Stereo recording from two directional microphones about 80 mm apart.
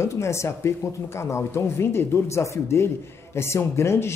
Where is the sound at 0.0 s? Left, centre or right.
Left.